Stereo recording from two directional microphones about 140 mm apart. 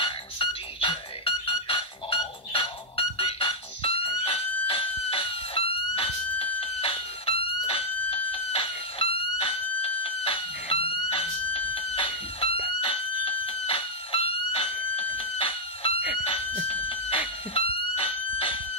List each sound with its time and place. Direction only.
0.0 s music: 40° left (ahead or behind)
12.8 s fire alarm: 40° left (ahead or behind)
16.6 s chicken: 40° left (ahead or behind)
17.6 s fire alarm: 40° left (ahead or behind)